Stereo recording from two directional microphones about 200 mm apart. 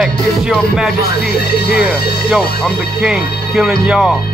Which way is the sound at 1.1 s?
50° left (ahead or behind).